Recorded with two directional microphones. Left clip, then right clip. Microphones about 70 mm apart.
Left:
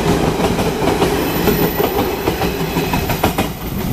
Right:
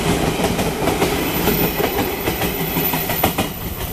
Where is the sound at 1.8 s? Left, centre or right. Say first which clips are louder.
Left 3 dB; right.